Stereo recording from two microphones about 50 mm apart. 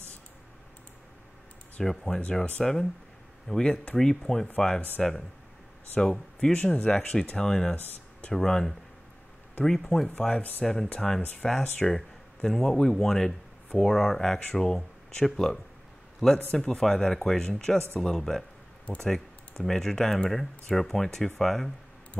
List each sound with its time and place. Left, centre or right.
1.8 s speech: centre
5.9 s speech: centre
10.1 s speech: centre
10.6 s speech: centre